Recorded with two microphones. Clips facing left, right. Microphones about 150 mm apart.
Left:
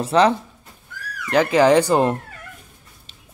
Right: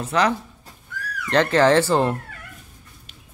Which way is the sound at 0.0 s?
30° left (ahead or behind).